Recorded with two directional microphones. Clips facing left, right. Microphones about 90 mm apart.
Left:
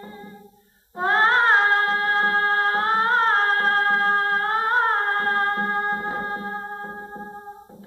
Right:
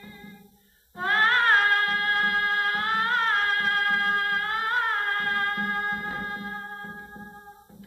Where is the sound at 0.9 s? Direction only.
25° left (ahead or behind).